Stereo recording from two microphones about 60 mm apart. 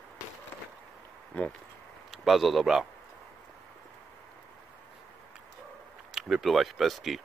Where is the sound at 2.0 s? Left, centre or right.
Centre.